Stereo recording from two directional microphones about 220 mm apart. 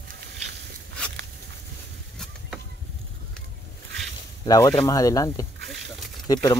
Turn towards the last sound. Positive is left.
turn(degrees=15)  # may be behind; listen again after turning